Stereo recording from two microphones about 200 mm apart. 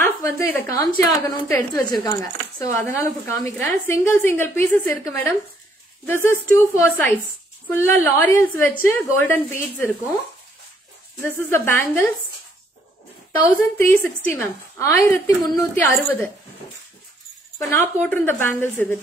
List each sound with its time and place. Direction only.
0.0 s a woman's voice: 10° left (ahead or behind)
11.2 s a woman's voice: 10° left (ahead or behind)
13.3 s a woman's voice: 10° left (ahead or behind)
17.6 s a woman's voice: 10° left (ahead or behind)